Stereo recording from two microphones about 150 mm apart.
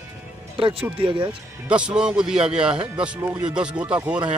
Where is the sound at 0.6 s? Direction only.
40° right (ahead or behind).